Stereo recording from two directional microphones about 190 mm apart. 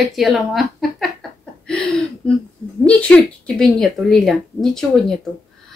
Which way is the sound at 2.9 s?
5° left (ahead or behind).